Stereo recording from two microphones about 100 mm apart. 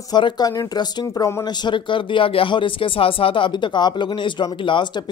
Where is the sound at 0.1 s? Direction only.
40° left (ahead or behind).